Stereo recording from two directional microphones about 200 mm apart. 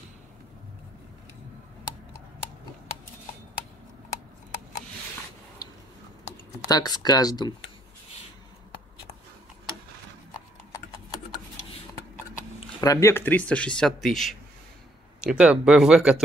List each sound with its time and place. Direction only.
5.6 s a sound: 20° left (ahead or behind)
6.7 s speech: 20° left (ahead or behind)
12.8 s speech: 15° left (ahead or behind); by 16.2 s 5° right (ahead or behind)